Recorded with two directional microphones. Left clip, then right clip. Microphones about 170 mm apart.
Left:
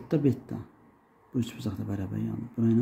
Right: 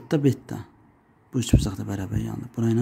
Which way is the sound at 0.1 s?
55° right (ahead or behind).